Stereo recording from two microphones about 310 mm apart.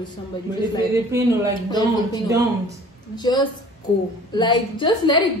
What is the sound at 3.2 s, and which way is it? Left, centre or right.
A woman's voice, centre.